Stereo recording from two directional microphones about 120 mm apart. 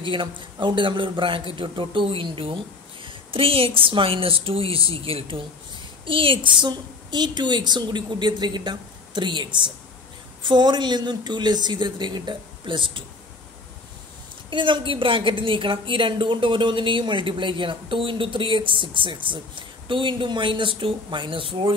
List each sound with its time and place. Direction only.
0.0 s a woman's voice: 45° right (ahead or behind)
14.5 s a woman's voice: 45° right (ahead or behind)